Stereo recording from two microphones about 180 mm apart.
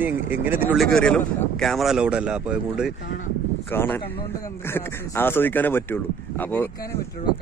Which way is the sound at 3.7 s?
10° left (ahead or behind).